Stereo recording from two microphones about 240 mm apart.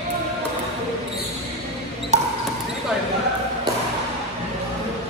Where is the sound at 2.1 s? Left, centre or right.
Right.